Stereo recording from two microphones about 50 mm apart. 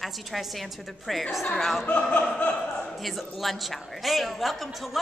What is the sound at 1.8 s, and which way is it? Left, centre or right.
Speech, left.